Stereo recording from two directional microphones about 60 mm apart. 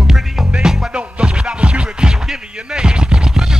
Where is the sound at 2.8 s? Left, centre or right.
Centre.